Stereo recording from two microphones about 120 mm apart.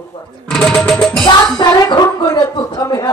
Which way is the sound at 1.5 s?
35° left (ahead or behind).